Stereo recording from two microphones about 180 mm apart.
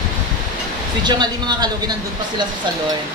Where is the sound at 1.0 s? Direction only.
25° right (ahead or behind).